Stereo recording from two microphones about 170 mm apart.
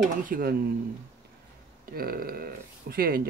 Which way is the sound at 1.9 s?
60° right (ahead or behind).